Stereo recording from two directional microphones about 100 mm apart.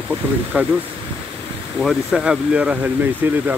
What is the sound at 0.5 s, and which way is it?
Speech, 10° right (ahead or behind).